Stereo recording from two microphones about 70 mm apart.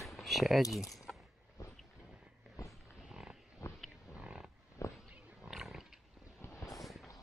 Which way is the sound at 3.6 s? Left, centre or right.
Left.